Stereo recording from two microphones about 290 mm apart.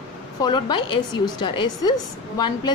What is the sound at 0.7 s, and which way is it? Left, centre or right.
Speech, left.